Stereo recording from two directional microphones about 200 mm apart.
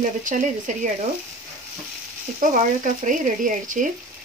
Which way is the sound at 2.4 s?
40° right (ahead or behind).